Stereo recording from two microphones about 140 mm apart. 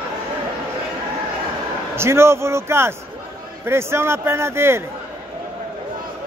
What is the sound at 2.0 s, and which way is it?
A man's voice, 20° right (ahead or behind).